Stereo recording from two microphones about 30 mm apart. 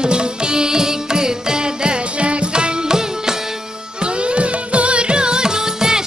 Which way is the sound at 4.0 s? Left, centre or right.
Right.